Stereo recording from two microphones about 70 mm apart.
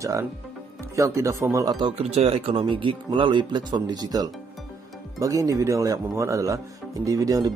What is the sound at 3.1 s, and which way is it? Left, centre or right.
Speech, right.